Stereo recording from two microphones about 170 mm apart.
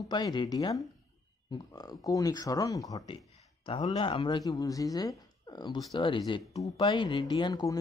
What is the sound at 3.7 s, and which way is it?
Speech, 35° left (ahead or behind).